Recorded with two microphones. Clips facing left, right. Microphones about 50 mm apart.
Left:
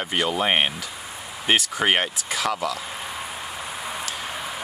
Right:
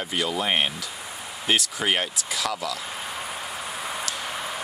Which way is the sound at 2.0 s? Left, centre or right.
Centre.